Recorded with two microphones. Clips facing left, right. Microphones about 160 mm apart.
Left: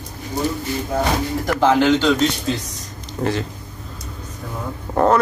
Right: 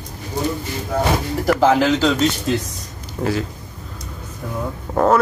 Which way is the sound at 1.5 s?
Centre (ahead or behind).